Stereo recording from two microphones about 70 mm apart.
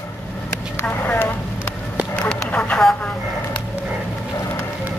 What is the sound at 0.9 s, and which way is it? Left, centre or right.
Vehicle, left.